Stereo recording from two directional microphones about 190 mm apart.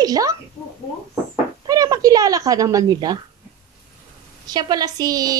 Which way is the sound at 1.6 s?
20° right (ahead or behind).